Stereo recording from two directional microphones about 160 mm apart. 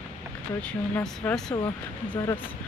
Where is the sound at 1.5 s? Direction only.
25° left (ahead or behind).